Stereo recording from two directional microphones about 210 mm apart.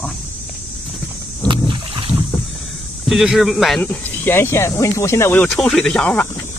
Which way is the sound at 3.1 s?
Centre (ahead or behind).